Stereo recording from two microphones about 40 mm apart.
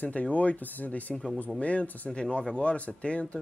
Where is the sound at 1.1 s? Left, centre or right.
Centre.